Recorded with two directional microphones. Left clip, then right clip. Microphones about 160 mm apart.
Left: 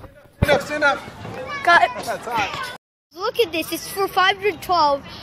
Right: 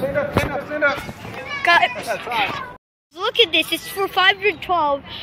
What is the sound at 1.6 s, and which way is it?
Speech, 20° left (ahead or behind).